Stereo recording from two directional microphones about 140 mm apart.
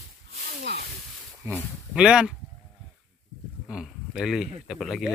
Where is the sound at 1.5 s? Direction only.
20° right (ahead or behind).